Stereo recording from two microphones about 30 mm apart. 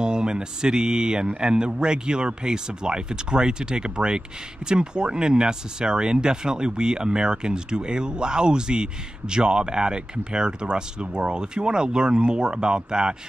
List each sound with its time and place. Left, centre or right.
0.0 s speech: right